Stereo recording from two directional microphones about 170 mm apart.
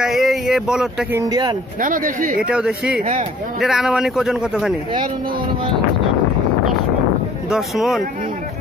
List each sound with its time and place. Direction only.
0.0 s a sound: centre (ahead or behind)
1.1 s a man's voice: 20° right (ahead or behind)
1.8 s speech: 50° right (ahead or behind)
2.4 s a man's voice: 5° right (ahead or behind)
7.4 s a man's voice: centre (ahead or behind)